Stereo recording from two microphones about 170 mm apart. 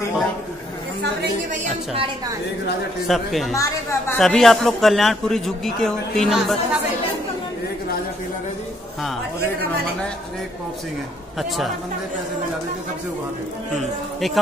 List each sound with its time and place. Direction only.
3.1 s a man's voice: centre (ahead or behind)
3.5 s a woman's voice: 20° left (ahead or behind)
4.2 s a man's voice: centre (ahead or behind)
11.3 s a man's voice: centre (ahead or behind)
14.2 s a man's voice: centre (ahead or behind)